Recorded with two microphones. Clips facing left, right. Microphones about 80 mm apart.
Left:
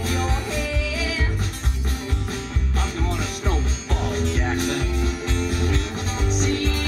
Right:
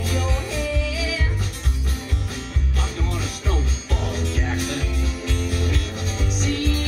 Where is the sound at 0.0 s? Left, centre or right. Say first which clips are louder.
Left 1 dB; left.